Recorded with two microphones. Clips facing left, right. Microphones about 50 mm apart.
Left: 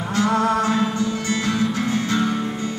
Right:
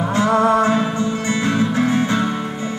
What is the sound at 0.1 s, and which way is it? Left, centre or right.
Music, right.